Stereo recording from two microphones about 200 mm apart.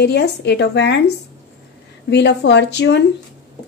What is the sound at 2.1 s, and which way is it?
Speech, 60° left (ahead or behind).